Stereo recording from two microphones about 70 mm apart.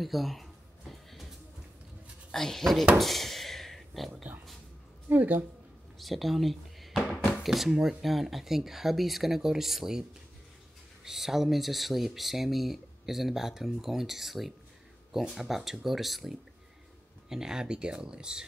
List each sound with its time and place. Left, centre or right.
0.0 s music: centre
2.3 s speech: centre
3.0 s a sound: centre
4.1 s speech: right
5.9 s a sound: centre
7.4 s speech: centre
11.1 s speech: centre